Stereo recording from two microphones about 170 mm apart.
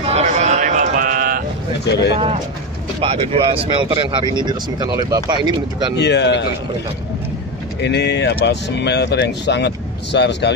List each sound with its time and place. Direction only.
0.0 s a sound: 40° right (ahead or behind)
2.1 s speech: 40° right (ahead or behind)
5.9 s speech: 90° left
7.8 s speech: 85° left